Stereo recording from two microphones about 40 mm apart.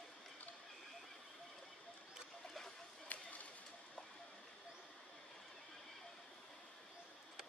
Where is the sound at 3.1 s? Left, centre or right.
Left.